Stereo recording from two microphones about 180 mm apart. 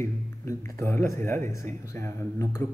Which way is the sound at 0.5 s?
15° left (ahead or behind).